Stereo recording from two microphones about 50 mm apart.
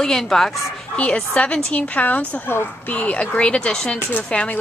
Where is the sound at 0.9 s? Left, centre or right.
Left.